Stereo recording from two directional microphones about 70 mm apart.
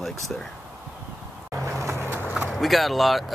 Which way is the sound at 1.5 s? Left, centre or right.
Right.